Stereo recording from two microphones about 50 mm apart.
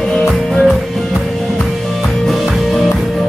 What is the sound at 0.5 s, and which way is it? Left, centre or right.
Music, centre.